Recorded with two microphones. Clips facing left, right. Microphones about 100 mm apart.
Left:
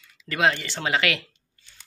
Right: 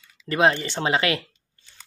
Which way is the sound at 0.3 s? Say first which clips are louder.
Right 3 dB; 25° right (ahead or behind).